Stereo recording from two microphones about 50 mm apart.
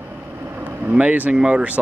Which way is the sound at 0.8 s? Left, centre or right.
Right.